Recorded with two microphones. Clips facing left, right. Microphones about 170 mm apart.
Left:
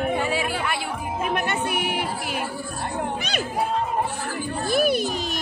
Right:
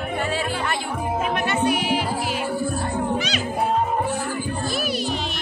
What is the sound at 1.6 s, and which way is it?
Music, 55° left (ahead or behind).